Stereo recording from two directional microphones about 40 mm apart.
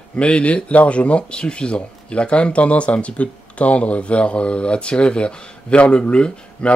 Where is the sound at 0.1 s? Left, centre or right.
Left.